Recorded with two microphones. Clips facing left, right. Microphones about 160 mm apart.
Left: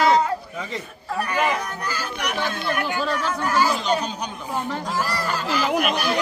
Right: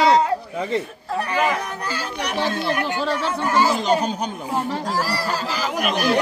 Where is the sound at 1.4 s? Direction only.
30° right (ahead or behind).